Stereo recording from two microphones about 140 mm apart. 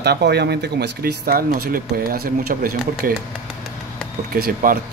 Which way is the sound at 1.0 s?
90° right.